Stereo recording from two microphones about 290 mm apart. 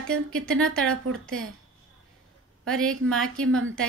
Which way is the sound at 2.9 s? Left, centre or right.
Right.